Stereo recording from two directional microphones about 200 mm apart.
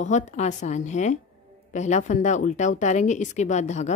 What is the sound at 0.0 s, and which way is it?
A woman's voice, 35° left (ahead or behind).